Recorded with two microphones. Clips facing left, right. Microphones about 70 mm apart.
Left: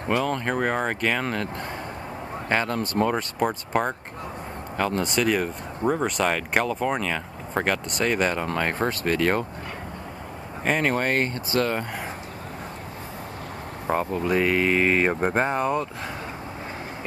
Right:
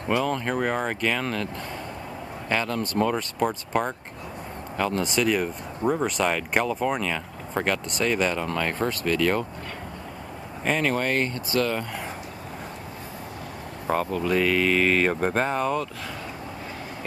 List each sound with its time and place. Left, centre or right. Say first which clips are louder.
0.2 s speech: left 1 dB; centre
1.2 s speech: left 1 dB; left
2.5 s speech: left 1 dB; left
3.3 s speech: left 1 dB; centre
8.5 s speech: left 1 dB; left
10.8 s speech: left 1 dB; left
13.8 s speech: even; centre